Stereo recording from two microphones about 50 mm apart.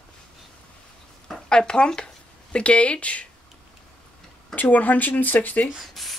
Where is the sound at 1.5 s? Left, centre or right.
Centre.